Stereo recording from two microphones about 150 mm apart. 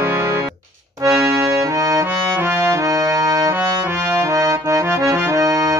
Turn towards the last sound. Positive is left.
turn(degrees=-20)  # may be behind; listen again after turning